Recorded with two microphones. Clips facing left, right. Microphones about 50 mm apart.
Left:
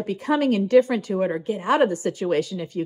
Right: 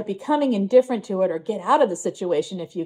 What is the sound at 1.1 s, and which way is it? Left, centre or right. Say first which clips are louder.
Speech: right 1 dB; left.